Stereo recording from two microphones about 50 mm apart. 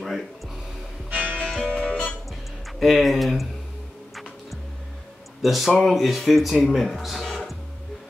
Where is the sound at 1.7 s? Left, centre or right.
Left.